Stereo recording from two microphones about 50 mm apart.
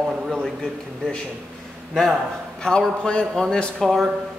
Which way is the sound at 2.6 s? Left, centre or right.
Centre.